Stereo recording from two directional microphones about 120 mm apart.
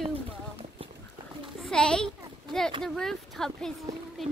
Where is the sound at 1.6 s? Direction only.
5° left (ahead or behind).